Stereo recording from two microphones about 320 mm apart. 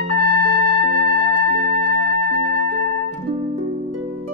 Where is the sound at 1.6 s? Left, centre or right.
Right.